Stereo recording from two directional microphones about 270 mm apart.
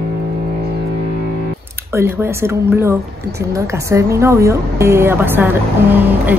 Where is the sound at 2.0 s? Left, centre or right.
Centre.